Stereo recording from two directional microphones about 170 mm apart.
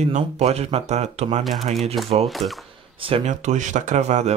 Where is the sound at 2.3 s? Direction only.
Centre (ahead or behind).